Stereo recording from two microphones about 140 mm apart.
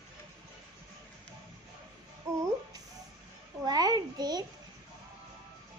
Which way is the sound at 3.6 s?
30° right (ahead or behind).